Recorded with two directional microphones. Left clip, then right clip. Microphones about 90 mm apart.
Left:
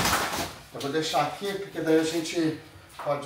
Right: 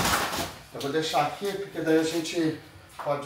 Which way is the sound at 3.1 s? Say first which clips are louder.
Even; 5° right (ahead or behind).